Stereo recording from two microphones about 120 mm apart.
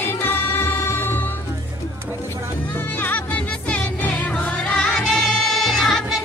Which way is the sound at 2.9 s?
15° left (ahead or behind).